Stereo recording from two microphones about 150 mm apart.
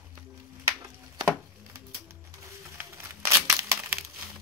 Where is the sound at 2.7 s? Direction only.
20° right (ahead or behind).